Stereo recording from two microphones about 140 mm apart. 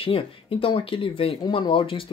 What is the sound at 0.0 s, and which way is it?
Speech, 40° left (ahead or behind).